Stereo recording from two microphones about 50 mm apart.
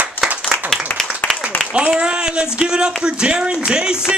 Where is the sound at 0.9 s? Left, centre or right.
Left.